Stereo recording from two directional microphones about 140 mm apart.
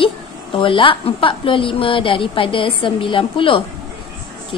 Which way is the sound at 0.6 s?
40° left (ahead or behind).